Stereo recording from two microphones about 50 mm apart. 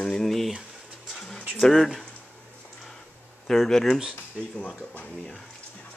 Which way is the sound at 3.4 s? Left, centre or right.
Centre.